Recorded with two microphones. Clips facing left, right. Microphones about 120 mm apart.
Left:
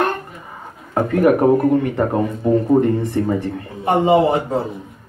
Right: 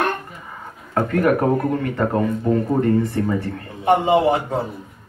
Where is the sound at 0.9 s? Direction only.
20° left (ahead or behind).